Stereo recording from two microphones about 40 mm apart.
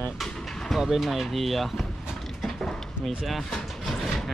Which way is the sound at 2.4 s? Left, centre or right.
Centre.